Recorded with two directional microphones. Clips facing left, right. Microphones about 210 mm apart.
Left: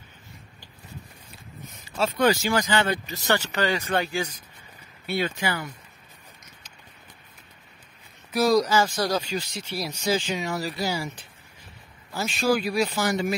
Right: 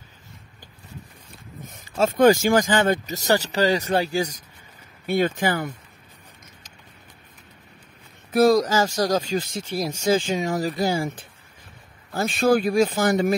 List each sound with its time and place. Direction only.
1.9 s speech: 50° right (ahead or behind)
5.0 s speech: 50° right (ahead or behind)
8.3 s speech: 55° right (ahead or behind)